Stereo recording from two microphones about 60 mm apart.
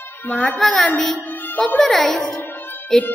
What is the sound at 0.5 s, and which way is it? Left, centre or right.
A child's voice, centre.